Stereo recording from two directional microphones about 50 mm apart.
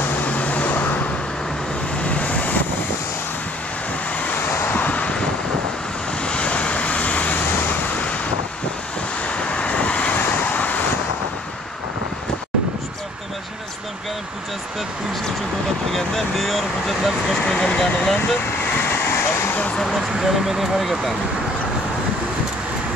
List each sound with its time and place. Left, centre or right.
0.2 s vehicle: left
2.0 s vehicle: left
4.7 s vehicle: left
6.2 s vehicle: left
9.3 s vehicle: left
15.9 s vehicle: centre
17.6 s vehicle: left
18.2 s vehicle: left
19.8 s vehicle: centre